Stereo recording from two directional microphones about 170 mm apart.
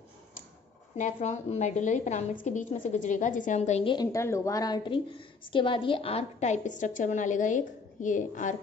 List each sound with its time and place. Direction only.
0.9 s a woman's voice: 45° left (ahead or behind)
3.8 s a woman's voice: 25° left (ahead or behind); by 8.5 s 50° left (ahead or behind)